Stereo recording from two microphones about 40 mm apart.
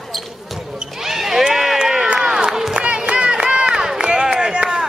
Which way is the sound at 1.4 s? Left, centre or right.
Centre.